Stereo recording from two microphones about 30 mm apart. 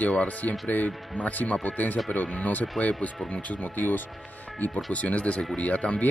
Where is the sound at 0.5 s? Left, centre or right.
Left.